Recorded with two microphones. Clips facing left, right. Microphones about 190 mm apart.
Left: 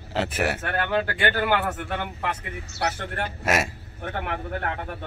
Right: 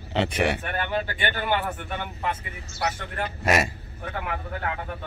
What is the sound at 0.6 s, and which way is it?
A man's voice, 75° left (ahead or behind).